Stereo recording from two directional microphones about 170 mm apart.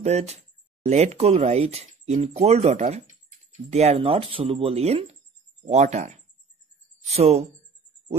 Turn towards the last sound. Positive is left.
turn(degrees=-40)  # may be behind; listen again after turning